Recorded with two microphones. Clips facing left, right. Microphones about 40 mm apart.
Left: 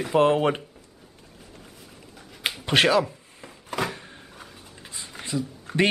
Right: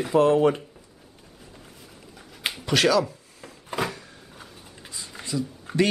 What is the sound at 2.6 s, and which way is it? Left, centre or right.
Speech, left.